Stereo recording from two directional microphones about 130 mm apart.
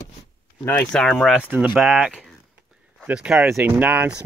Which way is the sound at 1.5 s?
10° right (ahead or behind).